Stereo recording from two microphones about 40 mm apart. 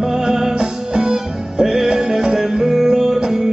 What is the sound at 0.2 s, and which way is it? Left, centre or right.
Music, centre.